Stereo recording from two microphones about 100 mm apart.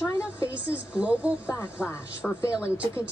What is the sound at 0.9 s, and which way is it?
A woman's voice, 15° right (ahead or behind).